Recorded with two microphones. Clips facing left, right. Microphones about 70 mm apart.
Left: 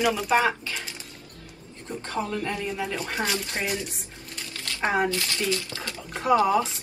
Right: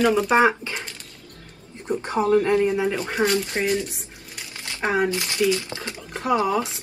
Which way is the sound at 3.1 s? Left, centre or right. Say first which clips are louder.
Right 7 dB; centre.